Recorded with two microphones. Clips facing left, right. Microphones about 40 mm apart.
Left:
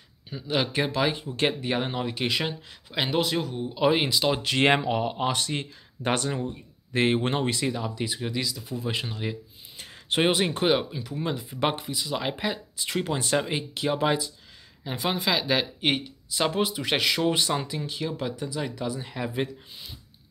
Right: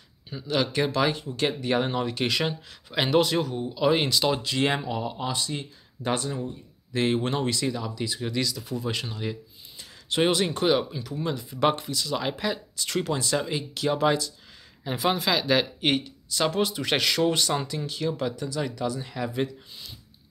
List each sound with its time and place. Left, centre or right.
0.3 s speech: centre
0.6 s speech: centre
1.2 s speech: left
1.7 s speech: centre
4.4 s speech: left
6.3 s speech: left
8.2 s speech: centre
9.8 s a sound: left
10.2 s speech: left
10.8 s speech: centre
14.9 s speech: centre
18.3 s speech: left